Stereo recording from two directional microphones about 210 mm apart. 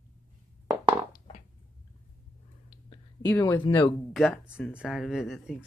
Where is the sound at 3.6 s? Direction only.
20° left (ahead or behind).